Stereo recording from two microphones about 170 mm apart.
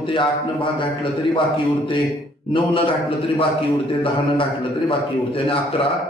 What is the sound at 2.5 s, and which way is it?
A man's voice, 30° left (ahead or behind).